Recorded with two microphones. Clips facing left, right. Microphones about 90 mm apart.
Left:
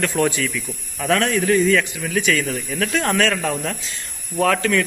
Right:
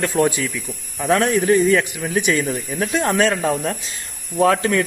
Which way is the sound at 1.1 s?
25° right (ahead or behind).